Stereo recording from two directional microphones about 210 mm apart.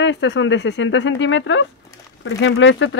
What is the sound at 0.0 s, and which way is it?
Speech, 60° left (ahead or behind).